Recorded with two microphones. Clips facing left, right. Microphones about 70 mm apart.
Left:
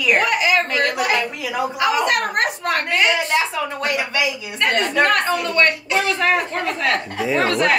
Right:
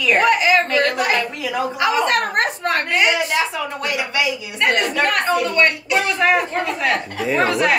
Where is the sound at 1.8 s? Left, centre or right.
Right.